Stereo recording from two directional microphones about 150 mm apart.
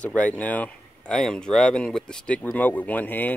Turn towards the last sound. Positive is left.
turn(degrees=10)  # may be behind; listen again after turning